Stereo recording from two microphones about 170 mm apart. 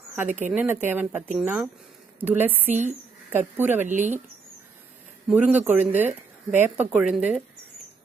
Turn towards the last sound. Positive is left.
turn(degrees=-5)  # may be behind; listen again after turning